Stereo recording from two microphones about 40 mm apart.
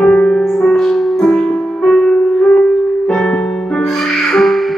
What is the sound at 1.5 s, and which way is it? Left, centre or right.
Music, centre.